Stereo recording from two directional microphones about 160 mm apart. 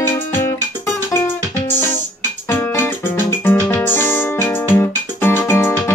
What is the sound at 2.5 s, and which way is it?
Music, 15° left (ahead or behind).